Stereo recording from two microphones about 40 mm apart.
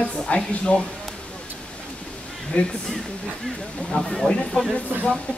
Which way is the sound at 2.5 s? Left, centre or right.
Left.